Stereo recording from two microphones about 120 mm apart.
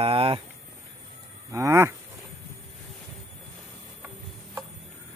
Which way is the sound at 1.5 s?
25° right (ahead or behind).